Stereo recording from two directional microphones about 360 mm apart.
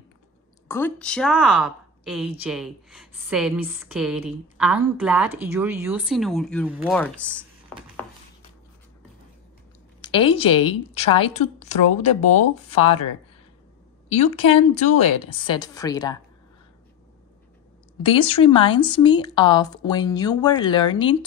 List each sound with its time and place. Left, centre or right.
0.7 s a woman's voice: centre
10.0 s speech: centre
14.0 s speech: centre
18.0 s speech: centre